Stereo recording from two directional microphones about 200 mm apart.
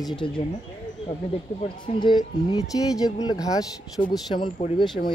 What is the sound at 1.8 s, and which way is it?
Speech, 20° left (ahead or behind).